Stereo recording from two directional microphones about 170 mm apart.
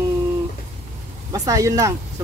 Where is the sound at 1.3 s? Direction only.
20° right (ahead or behind).